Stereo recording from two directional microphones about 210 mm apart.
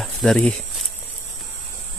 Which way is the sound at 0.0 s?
Centre (ahead or behind).